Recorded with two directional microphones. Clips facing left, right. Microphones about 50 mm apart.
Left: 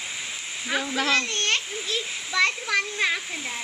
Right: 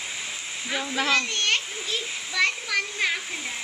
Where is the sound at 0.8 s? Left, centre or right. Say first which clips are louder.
Right 2 dB; centre.